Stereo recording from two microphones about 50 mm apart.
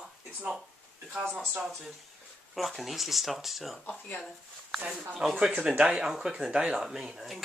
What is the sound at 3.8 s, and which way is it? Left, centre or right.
Speech, left.